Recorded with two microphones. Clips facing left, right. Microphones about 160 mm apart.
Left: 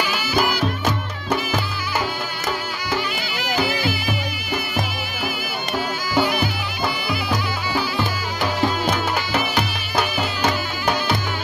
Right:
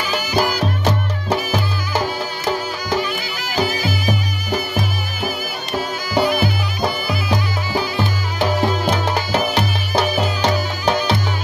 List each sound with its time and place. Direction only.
0.1 s music: 35° right (ahead or behind)
3.5 s music: 40° right (ahead or behind)
6.1 s bagpipes: 40° right (ahead or behind)
8.4 s music: 35° right (ahead or behind)